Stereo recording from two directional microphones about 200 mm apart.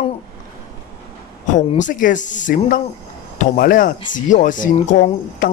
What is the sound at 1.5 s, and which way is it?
Speech, 40° left (ahead or behind).